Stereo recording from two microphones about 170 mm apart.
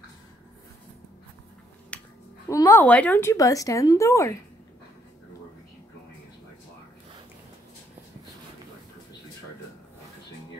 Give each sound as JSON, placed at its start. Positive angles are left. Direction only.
{"t": 1.9, "sound": "finger snapping", "side_deg": 10}
{"t": 2.4, "sound": "a woman's voice", "side_deg": 20}
{"t": 2.8, "sound": "a woman's voice", "side_deg": 10}